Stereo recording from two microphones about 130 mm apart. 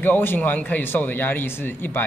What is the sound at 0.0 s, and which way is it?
A man's voice, 15° left (ahead or behind).